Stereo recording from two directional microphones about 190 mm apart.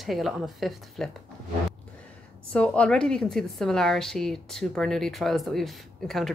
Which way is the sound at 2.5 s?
5° left (ahead or behind).